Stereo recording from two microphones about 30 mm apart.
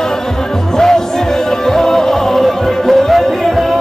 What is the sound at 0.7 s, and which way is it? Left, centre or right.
Music, centre.